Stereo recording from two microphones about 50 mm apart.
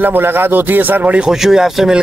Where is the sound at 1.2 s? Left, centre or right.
Centre.